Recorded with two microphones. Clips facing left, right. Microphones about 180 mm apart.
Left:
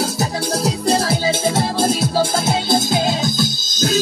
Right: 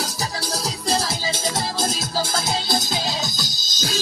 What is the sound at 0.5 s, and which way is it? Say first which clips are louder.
Music: left 7 dB; 60° left (ahead or behind).